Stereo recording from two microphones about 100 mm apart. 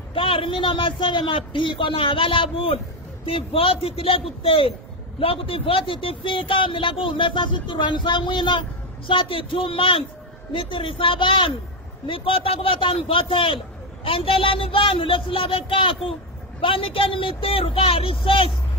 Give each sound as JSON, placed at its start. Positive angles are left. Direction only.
{"t": 0.1, "sound": "a woman's voice", "side_deg": 65}